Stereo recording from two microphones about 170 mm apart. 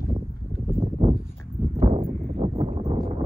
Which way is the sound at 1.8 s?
40° right (ahead or behind).